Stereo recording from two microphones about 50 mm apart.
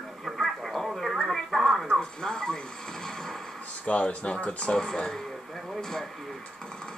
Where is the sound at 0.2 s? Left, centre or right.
Centre.